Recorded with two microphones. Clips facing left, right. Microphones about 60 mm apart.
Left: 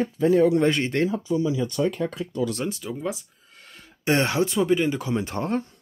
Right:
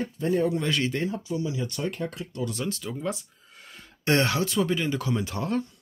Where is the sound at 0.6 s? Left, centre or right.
Left.